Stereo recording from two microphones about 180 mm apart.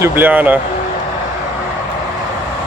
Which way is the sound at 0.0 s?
10° right (ahead or behind).